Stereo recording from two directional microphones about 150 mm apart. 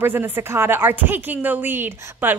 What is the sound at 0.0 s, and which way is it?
A woman's voice, 15° right (ahead or behind).